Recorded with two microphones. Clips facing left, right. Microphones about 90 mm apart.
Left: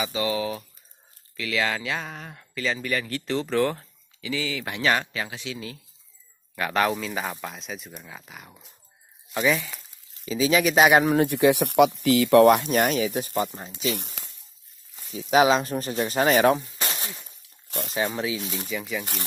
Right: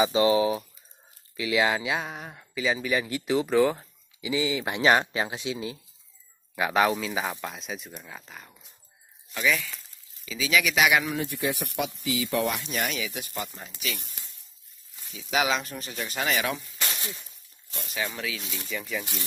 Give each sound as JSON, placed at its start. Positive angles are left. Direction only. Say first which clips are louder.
{"t": 0.0, "sound": "speech", "louder": "right 5 dB", "side_deg": -25}
{"t": 4.2, "sound": "speech", "louder": "right 3 dB", "side_deg": -20}
{"t": 6.5, "sound": "speech", "louder": "right 1 dB", "side_deg": -10}
{"t": 9.3, "sound": "speech", "louder": "left 3 dB", "side_deg": 30}
{"t": 11.2, "sound": "speech", "louder": "left 10 dB", "side_deg": 70}
{"t": 13.9, "sound": "speech", "louder": "left 8 dB", "side_deg": 60}
{"t": 15.1, "sound": "speech", "louder": "left 7 dB", "side_deg": 35}
{"t": 16.6, "sound": "a sound", "louder": "left 2 dB", "side_deg": 30}
{"t": 17.8, "sound": "speech", "louder": "left 5 dB", "side_deg": 35}
{"t": 18.7, "sound": "speech", "louder": "even", "side_deg": 5}